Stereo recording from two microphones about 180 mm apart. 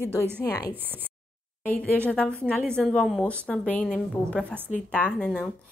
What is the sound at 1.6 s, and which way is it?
A woman's voice, 5° left (ahead or behind).